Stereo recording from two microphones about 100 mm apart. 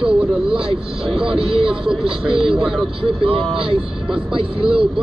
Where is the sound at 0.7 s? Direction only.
65° right (ahead or behind).